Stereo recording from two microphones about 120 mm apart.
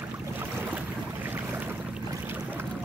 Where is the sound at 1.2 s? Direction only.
15° right (ahead or behind).